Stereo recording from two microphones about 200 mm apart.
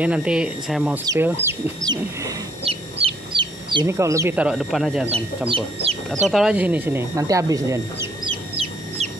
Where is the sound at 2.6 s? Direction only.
30° right (ahead or behind).